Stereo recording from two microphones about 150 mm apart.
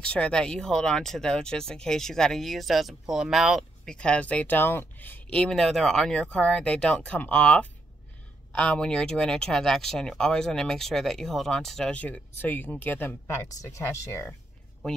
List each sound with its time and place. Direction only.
0.0 s speech: 5° left (ahead or behind)